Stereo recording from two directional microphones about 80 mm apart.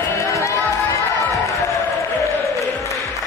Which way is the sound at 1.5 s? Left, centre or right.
Left.